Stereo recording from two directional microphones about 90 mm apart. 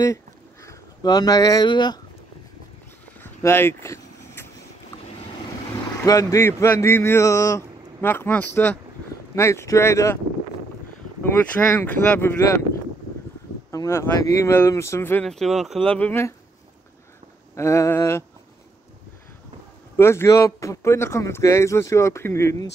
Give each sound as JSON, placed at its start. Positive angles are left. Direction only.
{"t": 0.0, "sound": "a sound", "side_deg": 35}
{"t": 1.0, "sound": "speech", "side_deg": 45}
{"t": 1.7, "sound": "speech", "side_deg": 55}
{"t": 3.2, "sound": "a sound", "side_deg": 25}
{"t": 4.9, "sound": "boat", "side_deg": 30}
{"t": 5.7, "sound": "speech", "side_deg": 40}
{"t": 8.0, "sound": "speech", "side_deg": 20}
{"t": 9.3, "sound": "speech", "side_deg": 30}
{"t": 11.8, "sound": "speech", "side_deg": 15}
{"t": 13.7, "sound": "speech", "side_deg": 30}
{"t": 15.2, "sound": "speech", "side_deg": 0}
{"t": 15.8, "sound": "speech", "side_deg": 15}
{"t": 17.6, "sound": "speech", "side_deg": 30}
{"t": 20.0, "sound": "speech", "side_deg": 30}